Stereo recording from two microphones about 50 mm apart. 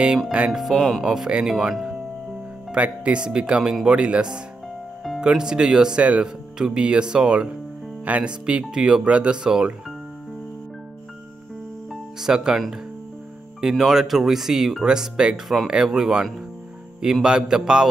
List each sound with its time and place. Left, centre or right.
0.5 s speech: centre
0.7 s speech: centre
1.0 s speech: centre
2.7 s speech: right
11.9 s music: centre
13.6 s speech: centre
15.4 s speech: centre